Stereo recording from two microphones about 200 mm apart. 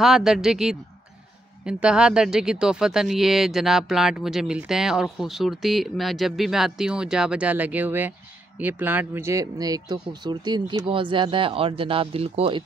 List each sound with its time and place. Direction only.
0.0 s speech: centre (ahead or behind); by 12.6 s 30° right (ahead or behind)